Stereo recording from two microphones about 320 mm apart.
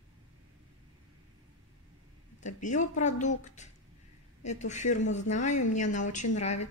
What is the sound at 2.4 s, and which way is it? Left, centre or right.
A woman's voice, left.